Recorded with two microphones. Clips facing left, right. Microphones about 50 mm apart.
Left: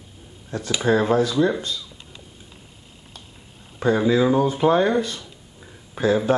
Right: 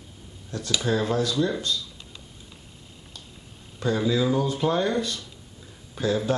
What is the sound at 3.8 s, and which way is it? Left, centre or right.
Speech, left.